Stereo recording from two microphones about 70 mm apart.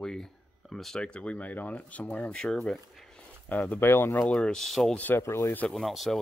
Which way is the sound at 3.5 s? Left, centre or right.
Centre.